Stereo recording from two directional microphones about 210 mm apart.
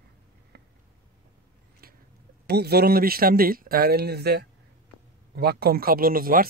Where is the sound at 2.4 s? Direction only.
50° right (ahead or behind).